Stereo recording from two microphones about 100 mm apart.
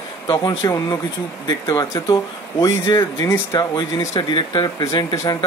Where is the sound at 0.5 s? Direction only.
40° left (ahead or behind).